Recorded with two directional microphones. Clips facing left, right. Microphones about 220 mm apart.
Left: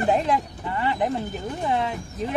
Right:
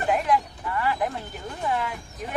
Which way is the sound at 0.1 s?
25° left (ahead or behind).